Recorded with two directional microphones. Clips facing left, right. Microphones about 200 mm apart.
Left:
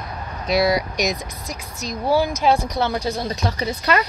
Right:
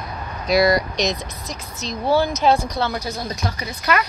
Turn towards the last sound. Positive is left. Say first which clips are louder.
# left 2 dB
turn(degrees=30)  # may be behind; listen again after turning